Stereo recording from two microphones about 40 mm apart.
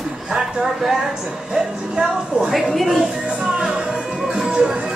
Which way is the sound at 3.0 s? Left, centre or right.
Centre.